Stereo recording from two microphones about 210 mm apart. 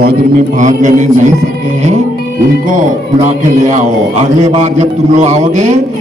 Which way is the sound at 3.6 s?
35° right (ahead or behind).